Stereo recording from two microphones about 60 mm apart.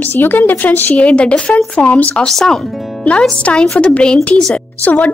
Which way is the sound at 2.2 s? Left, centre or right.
Centre.